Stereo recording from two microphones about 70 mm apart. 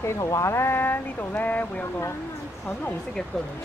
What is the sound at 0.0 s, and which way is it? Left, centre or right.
Speech, left.